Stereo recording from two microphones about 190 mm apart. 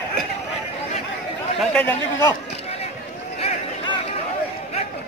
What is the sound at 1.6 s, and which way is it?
Speech, 5° left (ahead or behind).